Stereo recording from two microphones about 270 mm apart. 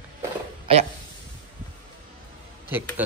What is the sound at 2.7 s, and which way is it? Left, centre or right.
Speech, centre.